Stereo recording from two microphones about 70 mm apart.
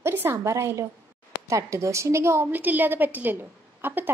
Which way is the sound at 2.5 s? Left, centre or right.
Right.